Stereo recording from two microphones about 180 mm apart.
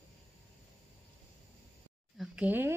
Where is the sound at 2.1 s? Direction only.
5° right (ahead or behind).